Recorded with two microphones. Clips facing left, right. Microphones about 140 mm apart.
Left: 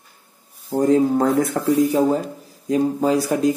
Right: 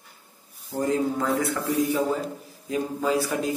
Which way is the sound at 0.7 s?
45° left (ahead or behind).